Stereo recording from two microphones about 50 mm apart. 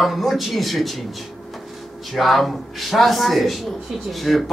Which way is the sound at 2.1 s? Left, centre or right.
Centre.